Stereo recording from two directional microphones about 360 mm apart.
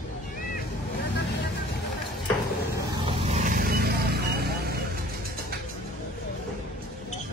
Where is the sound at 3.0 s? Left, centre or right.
Centre.